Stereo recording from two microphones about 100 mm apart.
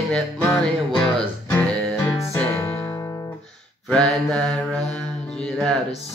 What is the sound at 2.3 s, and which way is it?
Music, 20° left (ahead or behind).